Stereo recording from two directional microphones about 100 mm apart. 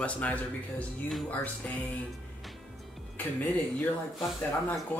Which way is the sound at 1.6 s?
15° left (ahead or behind).